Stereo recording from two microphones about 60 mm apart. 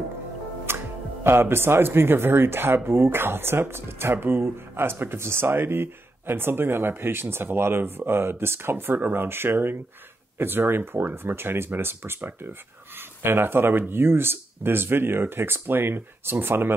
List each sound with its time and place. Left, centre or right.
0.7 s speech: right